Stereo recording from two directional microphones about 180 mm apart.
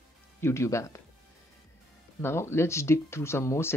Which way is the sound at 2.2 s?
15° left (ahead or behind).